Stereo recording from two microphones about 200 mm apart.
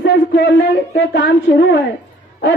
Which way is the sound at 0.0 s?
60° left (ahead or behind).